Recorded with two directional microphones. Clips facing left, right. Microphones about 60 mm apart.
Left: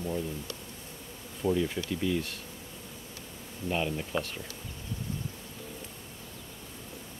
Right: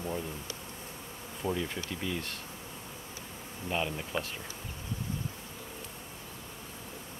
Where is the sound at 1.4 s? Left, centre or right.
Centre.